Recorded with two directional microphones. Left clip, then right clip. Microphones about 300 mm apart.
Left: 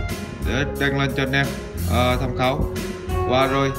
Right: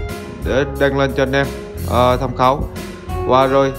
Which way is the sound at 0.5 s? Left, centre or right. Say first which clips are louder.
Right 7 dB; centre.